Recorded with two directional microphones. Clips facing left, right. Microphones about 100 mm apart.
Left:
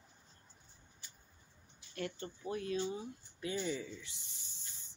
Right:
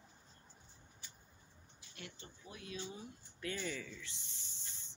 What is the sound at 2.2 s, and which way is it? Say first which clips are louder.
Speech: left 12 dB; 50° left (ahead or behind).